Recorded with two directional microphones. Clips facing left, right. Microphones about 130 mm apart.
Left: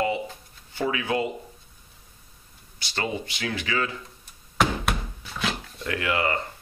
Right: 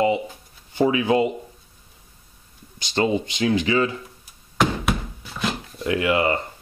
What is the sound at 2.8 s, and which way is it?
Speech, 20° right (ahead or behind).